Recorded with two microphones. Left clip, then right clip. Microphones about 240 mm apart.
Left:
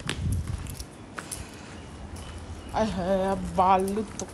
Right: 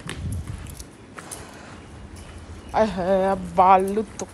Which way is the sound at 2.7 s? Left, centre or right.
Centre.